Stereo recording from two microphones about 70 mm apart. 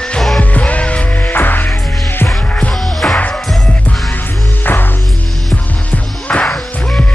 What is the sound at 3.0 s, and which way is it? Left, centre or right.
Music, left.